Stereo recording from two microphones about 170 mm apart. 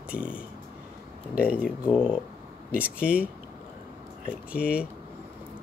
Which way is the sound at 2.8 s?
5° right (ahead or behind).